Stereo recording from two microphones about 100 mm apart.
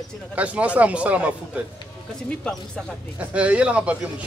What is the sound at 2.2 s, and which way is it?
Speech, 10° left (ahead or behind).